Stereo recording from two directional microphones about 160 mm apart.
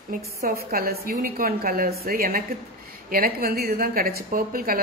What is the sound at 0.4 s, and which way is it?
Speech, 60° right (ahead or behind).